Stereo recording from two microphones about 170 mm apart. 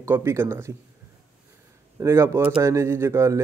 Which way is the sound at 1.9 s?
15° right (ahead or behind).